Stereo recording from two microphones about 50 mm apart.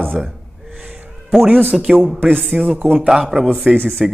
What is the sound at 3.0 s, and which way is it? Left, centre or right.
Speech, centre.